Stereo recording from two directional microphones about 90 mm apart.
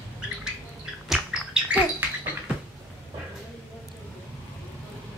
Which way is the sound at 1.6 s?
20° right (ahead or behind).